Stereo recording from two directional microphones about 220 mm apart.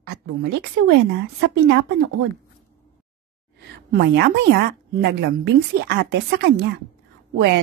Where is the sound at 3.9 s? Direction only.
50° right (ahead or behind).